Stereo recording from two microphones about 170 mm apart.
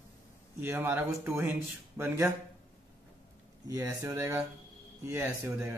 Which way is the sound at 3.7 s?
15° right (ahead or behind).